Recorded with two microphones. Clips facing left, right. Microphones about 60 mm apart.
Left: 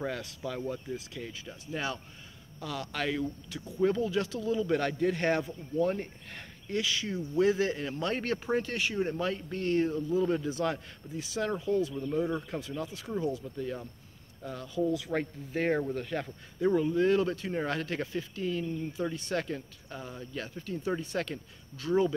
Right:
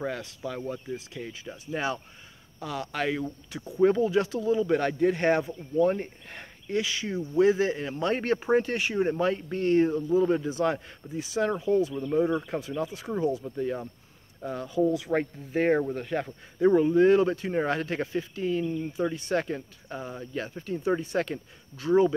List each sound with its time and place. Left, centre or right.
0.0 s speech: centre